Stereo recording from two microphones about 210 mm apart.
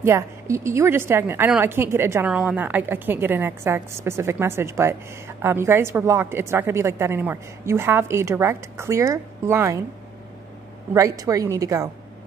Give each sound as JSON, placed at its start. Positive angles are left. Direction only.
{"t": 0.0, "sound": "a woman's voice", "side_deg": -10}
{"t": 10.9, "sound": "a woman's voice", "side_deg": -15}